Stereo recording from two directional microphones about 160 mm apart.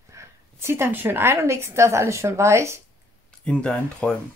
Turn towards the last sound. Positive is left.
turn(degrees=5)  # may be behind; listen again after turning